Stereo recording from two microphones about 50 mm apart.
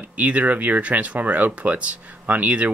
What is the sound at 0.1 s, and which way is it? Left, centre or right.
Speech, right.